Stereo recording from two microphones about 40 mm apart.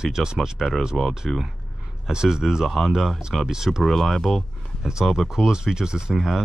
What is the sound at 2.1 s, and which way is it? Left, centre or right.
Speech, centre.